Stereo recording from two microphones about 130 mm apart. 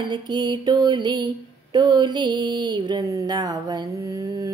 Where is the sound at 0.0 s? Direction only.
35° right (ahead or behind).